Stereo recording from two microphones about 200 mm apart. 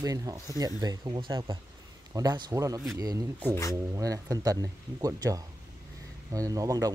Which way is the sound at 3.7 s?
15° right (ahead or behind).